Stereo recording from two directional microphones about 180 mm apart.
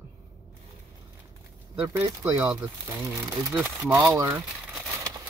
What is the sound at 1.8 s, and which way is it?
Speech, 15° right (ahead or behind).